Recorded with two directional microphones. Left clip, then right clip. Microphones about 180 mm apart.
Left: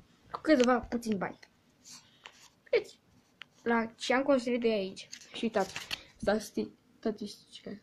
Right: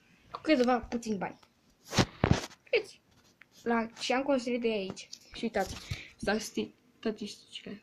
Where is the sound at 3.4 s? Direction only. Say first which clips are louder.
Left 1 dB; 5° right (ahead or behind).